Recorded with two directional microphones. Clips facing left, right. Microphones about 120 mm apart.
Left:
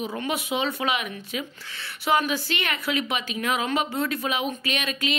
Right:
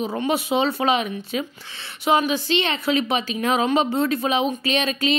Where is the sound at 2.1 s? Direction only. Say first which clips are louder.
Right 4 dB; 20° right (ahead or behind).